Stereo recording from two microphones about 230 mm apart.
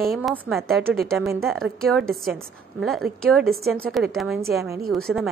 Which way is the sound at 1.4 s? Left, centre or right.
Centre.